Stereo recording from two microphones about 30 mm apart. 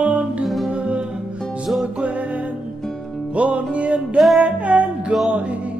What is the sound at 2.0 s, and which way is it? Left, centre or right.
Music, right.